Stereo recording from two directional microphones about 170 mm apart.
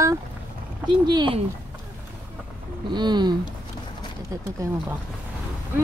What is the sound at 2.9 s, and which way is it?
Speech, 25° right (ahead or behind).